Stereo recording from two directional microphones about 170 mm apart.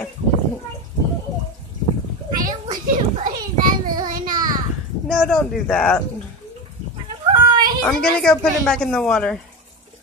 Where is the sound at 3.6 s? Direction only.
55° right (ahead or behind).